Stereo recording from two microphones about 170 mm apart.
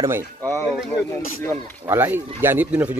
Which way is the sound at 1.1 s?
15° left (ahead or behind).